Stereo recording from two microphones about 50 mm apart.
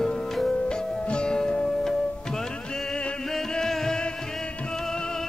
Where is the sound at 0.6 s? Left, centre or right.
Centre.